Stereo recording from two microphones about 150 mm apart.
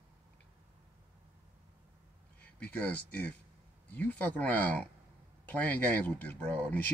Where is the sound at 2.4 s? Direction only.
10° left (ahead or behind).